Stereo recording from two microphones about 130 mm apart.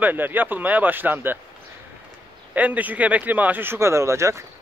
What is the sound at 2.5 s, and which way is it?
Speech, 10° right (ahead or behind).